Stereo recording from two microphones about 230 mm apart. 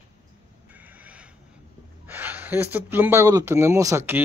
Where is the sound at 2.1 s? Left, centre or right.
Centre.